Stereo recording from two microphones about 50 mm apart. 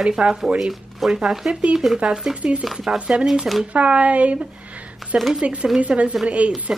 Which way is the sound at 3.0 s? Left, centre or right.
Right.